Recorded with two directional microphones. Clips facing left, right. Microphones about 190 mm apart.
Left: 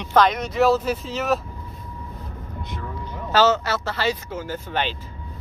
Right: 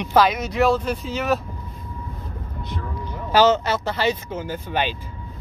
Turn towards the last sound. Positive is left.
turn(degrees=-15)  # may be behind; listen again after turning